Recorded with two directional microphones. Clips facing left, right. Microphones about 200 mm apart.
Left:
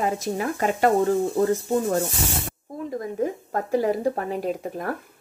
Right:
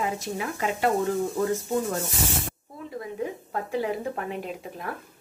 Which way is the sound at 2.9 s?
45° left (ahead or behind).